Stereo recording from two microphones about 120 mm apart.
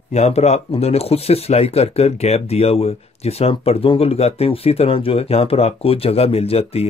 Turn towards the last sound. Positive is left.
turn(degrees=55)  # may be behind; listen again after turning